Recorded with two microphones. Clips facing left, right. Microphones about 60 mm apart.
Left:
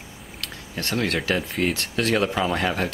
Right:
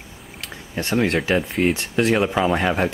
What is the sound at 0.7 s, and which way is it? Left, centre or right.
Speech, centre.